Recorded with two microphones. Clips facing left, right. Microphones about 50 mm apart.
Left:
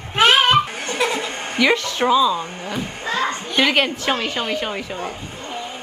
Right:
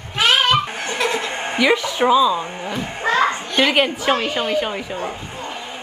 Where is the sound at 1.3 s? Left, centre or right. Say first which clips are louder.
Right 3 dB; right.